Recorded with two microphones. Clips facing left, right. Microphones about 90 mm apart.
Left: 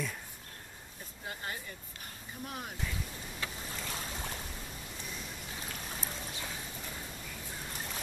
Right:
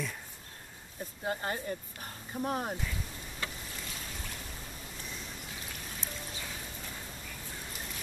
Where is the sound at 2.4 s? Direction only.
40° right (ahead or behind).